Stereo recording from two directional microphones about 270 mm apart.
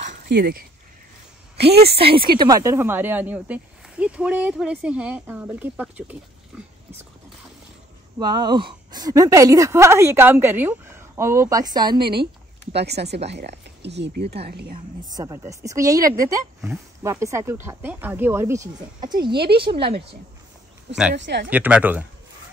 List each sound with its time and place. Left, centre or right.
0.0 s a sound: right
1.6 s speech: right
2.0 s speech: centre
8.2 s speech: centre
12.0 s speech: right
15.0 s speech: centre
19.3 s speech: right
19.6 s a woman's voice: centre
21.1 s speech: right
21.5 s speech: centre